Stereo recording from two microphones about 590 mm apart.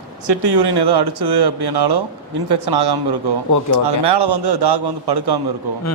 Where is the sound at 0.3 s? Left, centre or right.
Right.